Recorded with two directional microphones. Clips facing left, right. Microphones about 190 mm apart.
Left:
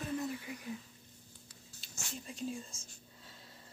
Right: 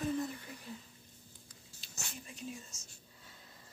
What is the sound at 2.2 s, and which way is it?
Speech, 30° left (ahead or behind).